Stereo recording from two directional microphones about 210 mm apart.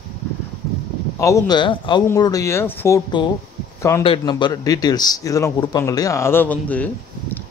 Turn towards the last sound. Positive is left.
turn(degrees=5)  # may be behind; listen again after turning